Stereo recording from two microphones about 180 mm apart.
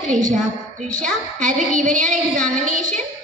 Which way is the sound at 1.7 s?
45° right (ahead or behind).